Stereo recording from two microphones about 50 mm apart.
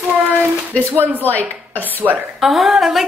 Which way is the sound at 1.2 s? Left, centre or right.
Left.